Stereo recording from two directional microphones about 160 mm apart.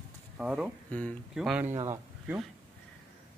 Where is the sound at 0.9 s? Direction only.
10° left (ahead or behind).